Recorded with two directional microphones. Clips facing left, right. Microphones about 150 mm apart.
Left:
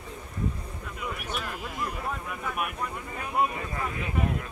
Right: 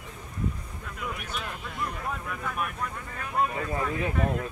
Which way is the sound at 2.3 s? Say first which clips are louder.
Right 1 dB; 10° left (ahead or behind).